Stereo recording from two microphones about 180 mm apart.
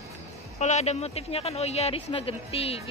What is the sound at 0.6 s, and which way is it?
Speech, 40° left (ahead or behind).